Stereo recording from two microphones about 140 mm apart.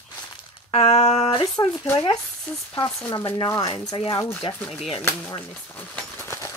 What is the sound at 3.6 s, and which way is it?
Speech, 30° left (ahead or behind).